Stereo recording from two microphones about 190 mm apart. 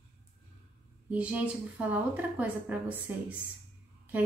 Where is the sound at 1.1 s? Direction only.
5° right (ahead or behind).